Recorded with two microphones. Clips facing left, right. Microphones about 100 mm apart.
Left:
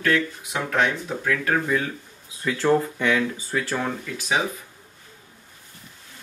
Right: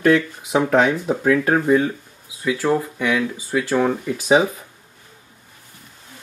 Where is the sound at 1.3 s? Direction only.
20° right (ahead or behind).